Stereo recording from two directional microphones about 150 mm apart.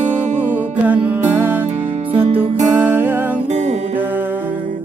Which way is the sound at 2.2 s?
40° right (ahead or behind).